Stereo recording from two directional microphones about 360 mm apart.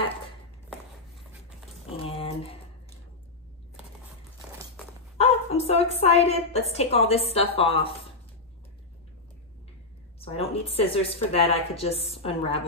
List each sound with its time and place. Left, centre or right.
1.9 s a sound: centre
5.1 s a woman's voice: centre
10.2 s a woman's voice: centre